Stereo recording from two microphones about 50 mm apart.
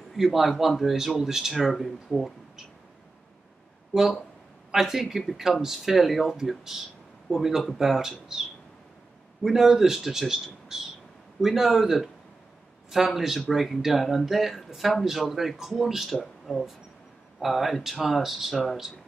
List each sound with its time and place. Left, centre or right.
0.1 s speech: centre
3.9 s speech: centre
9.4 s speech: centre